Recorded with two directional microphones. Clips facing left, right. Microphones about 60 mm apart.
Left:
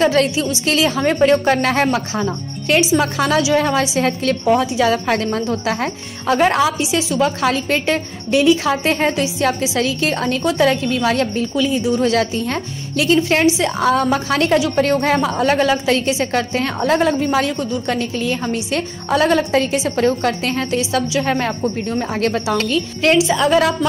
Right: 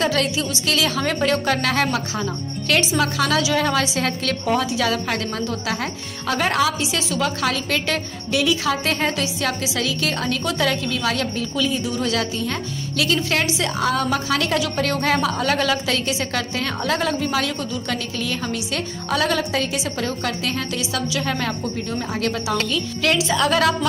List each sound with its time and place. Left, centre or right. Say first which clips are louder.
0.0 s a woman's voice: left 6 dB; left
11.5 s a woman's voice: left 4 dB; left
12.0 s a woman's voice: left 6 dB; left
23.1 s a woman's voice: left 5 dB; left